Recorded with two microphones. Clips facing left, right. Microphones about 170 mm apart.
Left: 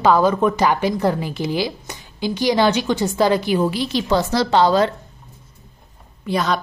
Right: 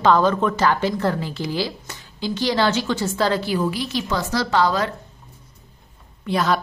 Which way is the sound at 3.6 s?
30° left (ahead or behind).